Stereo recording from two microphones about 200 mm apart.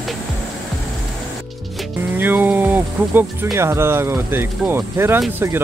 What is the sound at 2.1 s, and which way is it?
Speech, 10° right (ahead or behind).